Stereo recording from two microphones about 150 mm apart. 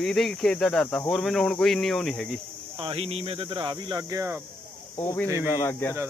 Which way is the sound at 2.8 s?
40° right (ahead or behind).